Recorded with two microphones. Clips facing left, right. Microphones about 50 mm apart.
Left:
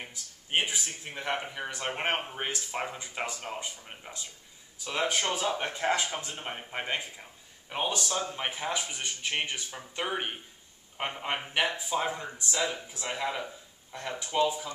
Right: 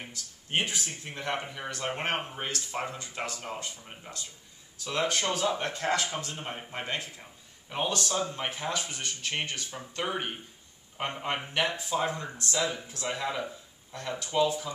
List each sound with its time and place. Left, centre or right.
0.0 s speech: centre